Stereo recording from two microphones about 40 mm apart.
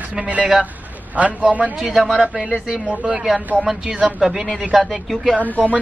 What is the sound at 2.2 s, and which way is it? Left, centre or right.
Speech, right.